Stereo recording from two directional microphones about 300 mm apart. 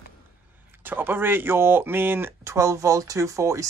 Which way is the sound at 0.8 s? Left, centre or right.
Centre.